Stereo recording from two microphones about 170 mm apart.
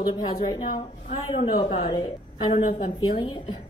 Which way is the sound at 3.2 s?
30° left (ahead or behind).